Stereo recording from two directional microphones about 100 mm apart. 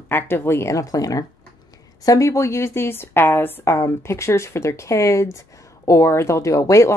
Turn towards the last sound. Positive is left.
turn(degrees=35)  # may be behind; listen again after turning